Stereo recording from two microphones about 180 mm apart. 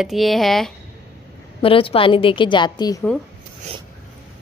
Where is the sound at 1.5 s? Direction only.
30° left (ahead or behind).